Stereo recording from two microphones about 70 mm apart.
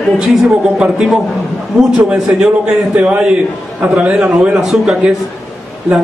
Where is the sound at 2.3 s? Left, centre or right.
Centre.